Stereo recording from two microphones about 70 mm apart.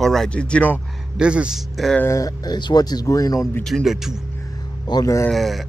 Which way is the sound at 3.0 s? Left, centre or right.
Left.